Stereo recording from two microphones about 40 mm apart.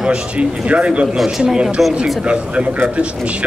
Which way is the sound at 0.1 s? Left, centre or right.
Right.